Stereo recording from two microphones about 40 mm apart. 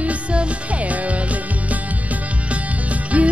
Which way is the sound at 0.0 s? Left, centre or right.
Right.